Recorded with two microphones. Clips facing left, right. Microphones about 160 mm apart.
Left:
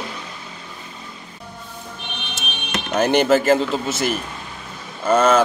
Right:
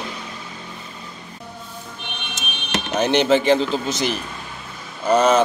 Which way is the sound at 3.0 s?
10° left (ahead or behind).